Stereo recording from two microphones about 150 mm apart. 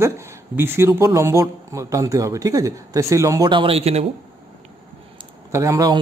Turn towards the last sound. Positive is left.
turn(degrees=-25)  # may be behind; listen again after turning